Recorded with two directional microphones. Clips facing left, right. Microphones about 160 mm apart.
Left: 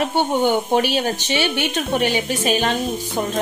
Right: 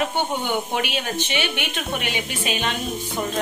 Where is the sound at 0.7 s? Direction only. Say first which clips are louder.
Left 6 dB; 35° left (ahead or behind).